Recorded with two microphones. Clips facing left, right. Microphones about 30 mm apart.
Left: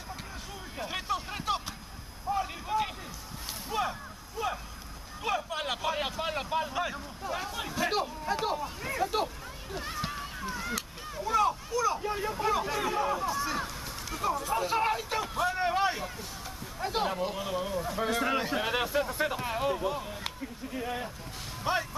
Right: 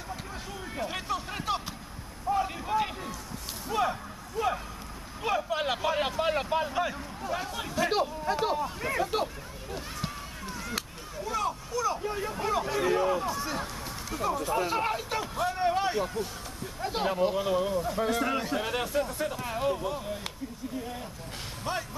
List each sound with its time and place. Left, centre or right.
0.7 s a sound: centre
3.6 s speech: centre
4.4 s vehicle: centre
5.2 s speech: centre
9.2 s run: centre
11.1 s speech: centre
20.7 s speech: left